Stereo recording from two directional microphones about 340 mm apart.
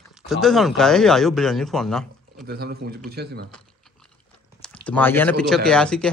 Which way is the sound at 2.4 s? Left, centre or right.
Right.